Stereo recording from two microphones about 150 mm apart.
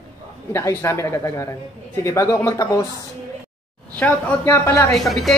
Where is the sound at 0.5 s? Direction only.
15° left (ahead or behind).